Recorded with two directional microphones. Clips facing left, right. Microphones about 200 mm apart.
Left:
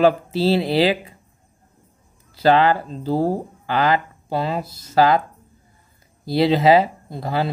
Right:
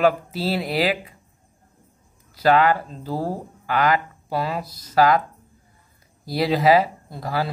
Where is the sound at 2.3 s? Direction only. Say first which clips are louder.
Left 2 dB; 30° left (ahead or behind).